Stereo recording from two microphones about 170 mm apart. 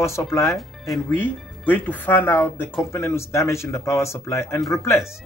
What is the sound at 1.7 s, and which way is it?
Speech, 10° left (ahead or behind).